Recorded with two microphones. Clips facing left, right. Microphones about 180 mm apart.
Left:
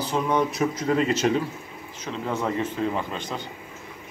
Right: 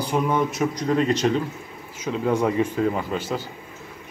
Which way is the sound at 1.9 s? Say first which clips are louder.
Right 6 dB; 10° right (ahead or behind).